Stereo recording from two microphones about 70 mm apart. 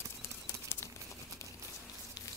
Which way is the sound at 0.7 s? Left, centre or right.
Left.